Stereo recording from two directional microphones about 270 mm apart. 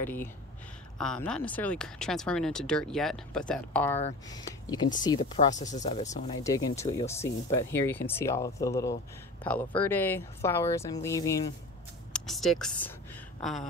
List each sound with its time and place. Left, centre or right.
0.0 s speech: centre
12.1 s speech: centre
13.4 s a sound: centre